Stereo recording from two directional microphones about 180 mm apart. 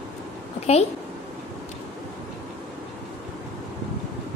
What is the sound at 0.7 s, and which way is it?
Speech, 35° left (ahead or behind).